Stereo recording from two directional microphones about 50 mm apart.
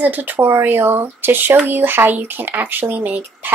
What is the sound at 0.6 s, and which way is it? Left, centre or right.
A woman's voice, right.